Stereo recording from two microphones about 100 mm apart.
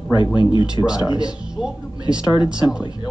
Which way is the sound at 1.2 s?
5° right (ahead or behind).